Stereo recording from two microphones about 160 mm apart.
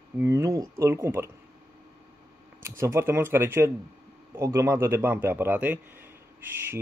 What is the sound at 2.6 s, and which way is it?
Speech, 15° right (ahead or behind).